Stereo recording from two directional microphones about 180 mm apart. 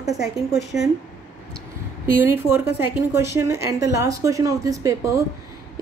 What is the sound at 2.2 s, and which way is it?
A woman's voice, 15° right (ahead or behind).